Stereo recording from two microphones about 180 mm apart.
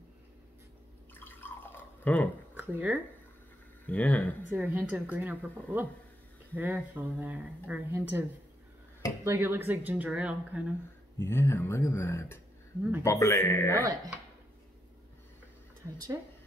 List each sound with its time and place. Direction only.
1.2 s drip: 10° left (ahead or behind)
2.5 s a sound: 10° right (ahead or behind)
3.8 s speech: 10° left (ahead or behind)
4.5 s a woman's voice: 10° right (ahead or behind)
11.1 s speech: 15° left (ahead or behind)